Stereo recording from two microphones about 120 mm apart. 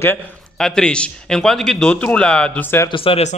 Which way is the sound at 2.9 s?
50° left (ahead or behind).